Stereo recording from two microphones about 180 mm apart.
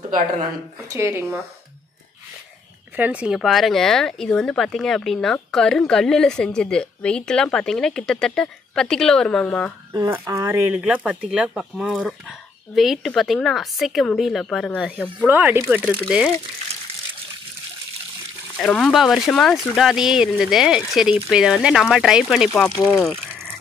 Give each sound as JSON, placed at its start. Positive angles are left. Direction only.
{"t": 0.7, "sound": "speech", "side_deg": -15}
{"t": 3.0, "sound": "speech", "side_deg": -5}
{"t": 9.9, "sound": "speech", "side_deg": -15}
{"t": 18.6, "sound": "speech", "side_deg": 5}